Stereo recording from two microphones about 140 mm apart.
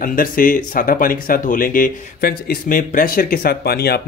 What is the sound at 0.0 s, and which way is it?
Speech, 85° left.